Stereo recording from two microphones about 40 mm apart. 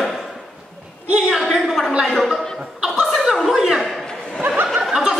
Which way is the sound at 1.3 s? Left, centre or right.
Centre.